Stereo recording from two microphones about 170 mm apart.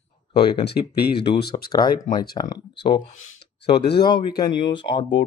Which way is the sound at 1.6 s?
25° left (ahead or behind).